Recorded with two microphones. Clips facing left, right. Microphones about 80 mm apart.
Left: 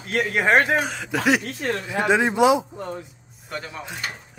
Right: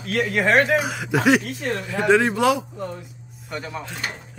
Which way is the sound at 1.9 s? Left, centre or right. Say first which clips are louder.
Right 3 dB; centre.